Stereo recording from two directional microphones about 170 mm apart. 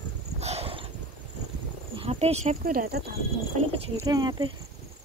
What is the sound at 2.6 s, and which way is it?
Speech, 60° right (ahead or behind).